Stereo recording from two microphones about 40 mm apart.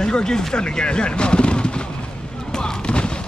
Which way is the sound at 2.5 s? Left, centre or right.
Left.